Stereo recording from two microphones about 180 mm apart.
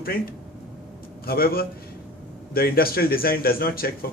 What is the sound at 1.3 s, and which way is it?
Speech, 55° left (ahead or behind).